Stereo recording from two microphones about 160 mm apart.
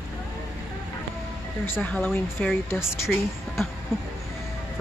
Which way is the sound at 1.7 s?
10° left (ahead or behind).